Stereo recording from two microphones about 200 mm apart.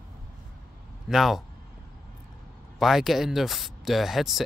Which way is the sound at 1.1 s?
Centre (ahead or behind).